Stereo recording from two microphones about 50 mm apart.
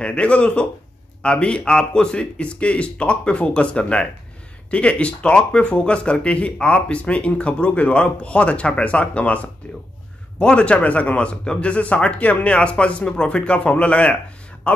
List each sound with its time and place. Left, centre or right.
0.0 s speech: left